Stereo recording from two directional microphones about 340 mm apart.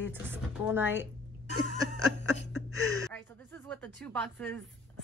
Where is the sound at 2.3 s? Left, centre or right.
Left.